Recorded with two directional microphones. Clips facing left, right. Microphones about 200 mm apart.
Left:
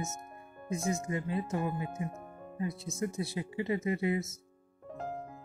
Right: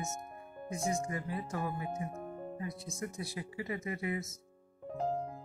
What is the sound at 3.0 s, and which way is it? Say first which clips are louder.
Speech: left 6 dB; 25° left (ahead or behind).